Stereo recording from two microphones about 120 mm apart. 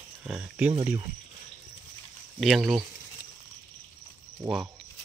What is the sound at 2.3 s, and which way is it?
Speech, centre (ahead or behind).